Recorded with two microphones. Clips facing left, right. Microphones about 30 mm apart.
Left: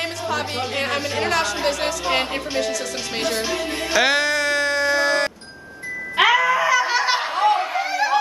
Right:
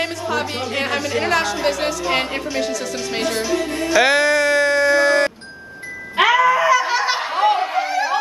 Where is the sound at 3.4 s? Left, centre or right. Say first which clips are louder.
Right 3 dB; left.